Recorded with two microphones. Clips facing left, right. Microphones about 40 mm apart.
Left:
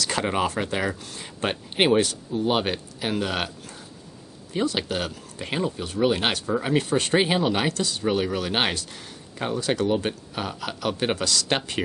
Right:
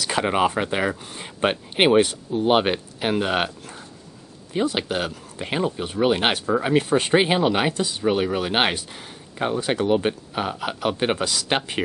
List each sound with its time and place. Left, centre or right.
0.0 s speech: centre